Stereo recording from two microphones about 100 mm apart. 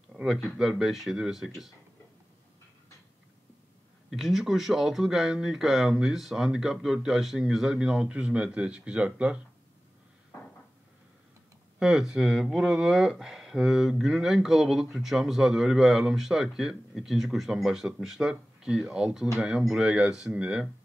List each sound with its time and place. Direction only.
0.1 s a sound: 5° right (ahead or behind)
0.4 s speech: centre (ahead or behind)
4.1 s speech: 5° right (ahead or behind)
11.8 s speech: 5° right (ahead or behind)